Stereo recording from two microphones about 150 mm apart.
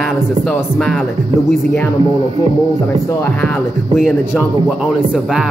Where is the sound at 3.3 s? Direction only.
5° left (ahead or behind).